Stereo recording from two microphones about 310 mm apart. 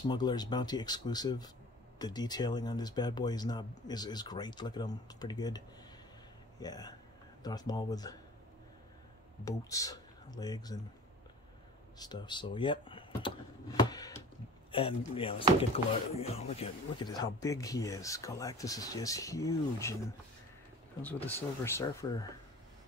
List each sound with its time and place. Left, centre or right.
0.0 s speech: centre
6.6 s speech: centre
9.4 s speech: centre
12.0 s speech: centre
21.4 s speech: centre